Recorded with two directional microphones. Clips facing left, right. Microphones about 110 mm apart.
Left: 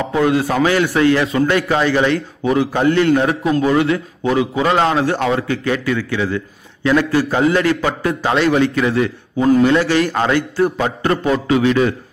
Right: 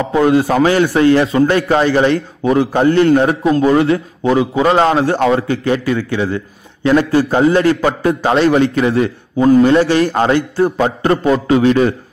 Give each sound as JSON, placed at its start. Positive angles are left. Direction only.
{"t": 0.1, "sound": "a man's voice", "side_deg": -30}